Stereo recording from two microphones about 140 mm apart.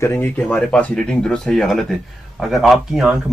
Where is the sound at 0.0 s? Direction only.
20° left (ahead or behind).